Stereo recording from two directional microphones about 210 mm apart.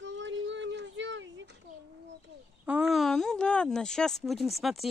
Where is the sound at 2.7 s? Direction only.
5° right (ahead or behind).